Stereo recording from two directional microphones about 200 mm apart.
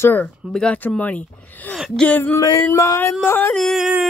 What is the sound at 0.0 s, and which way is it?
Speech, 10° left (ahead or behind).